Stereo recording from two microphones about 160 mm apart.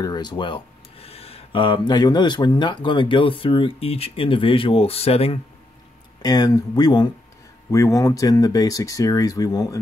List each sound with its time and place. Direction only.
0.0 s speech: 25° left (ahead or behind)
6.2 s speech: 25° left (ahead or behind)